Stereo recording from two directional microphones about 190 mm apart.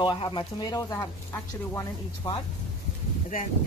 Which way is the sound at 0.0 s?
25° left (ahead or behind).